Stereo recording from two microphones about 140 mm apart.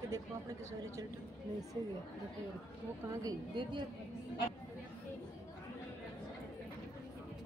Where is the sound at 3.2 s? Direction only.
30° right (ahead or behind).